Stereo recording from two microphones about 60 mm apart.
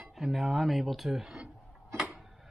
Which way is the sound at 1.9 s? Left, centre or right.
Centre.